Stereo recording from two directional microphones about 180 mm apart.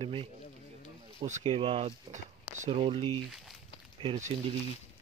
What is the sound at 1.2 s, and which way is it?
Speech, 40° right (ahead or behind).